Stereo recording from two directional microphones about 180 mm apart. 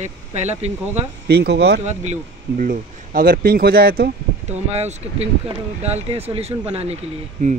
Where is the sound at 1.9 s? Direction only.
40° right (ahead or behind).